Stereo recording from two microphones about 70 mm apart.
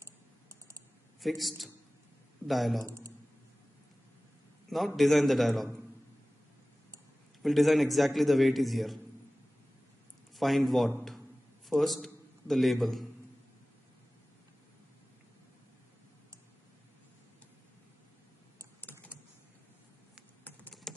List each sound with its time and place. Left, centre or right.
0.0 s typing: right
1.2 s a man's voice: centre
2.8 s speech: right
4.6 s a man's voice: centre
7.4 s a man's voice: centre
10.3 s a man's voice: centre
18.8 s computer keyboard: left
20.9 s typing: centre